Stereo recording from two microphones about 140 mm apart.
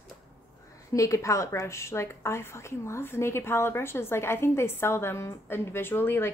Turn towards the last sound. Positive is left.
turn(degrees=15)  # may be behind; listen again after turning